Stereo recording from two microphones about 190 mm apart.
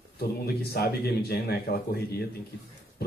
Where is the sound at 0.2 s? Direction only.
55° left (ahead or behind).